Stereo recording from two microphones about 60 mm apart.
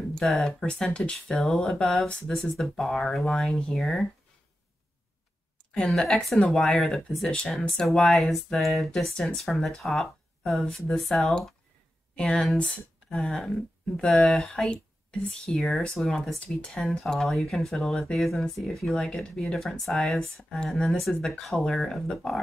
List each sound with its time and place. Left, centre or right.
0.1 s speech: centre
5.9 s speech: centre
13.1 s speech: centre